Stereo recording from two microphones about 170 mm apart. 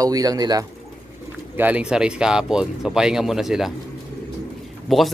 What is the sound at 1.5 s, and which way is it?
Speech, 10° right (ahead or behind).